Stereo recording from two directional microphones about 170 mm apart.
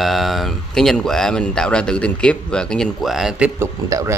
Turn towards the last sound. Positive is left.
turn(degrees=-15)  # may be behind; listen again after turning